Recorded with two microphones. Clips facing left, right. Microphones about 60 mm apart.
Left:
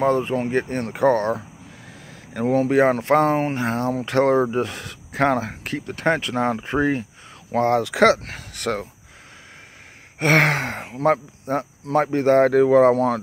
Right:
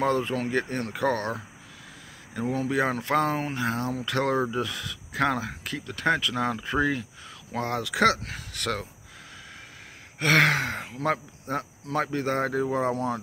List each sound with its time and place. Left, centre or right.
0.0 s speech: left
2.3 s speech: left
10.1 s speech: left
12.5 s speech: left